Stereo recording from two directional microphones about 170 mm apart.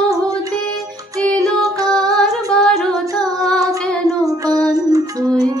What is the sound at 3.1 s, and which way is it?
Child singing, 5° left (ahead or behind).